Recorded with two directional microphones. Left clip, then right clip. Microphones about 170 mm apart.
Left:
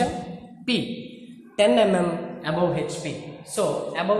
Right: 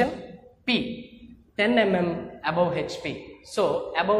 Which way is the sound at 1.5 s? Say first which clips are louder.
Left 4 dB; 45° right (ahead or behind).